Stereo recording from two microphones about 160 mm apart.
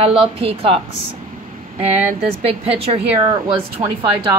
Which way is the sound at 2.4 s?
35° right (ahead or behind).